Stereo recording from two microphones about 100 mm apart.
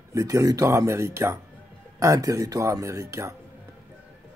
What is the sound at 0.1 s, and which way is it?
Speech, 35° right (ahead or behind).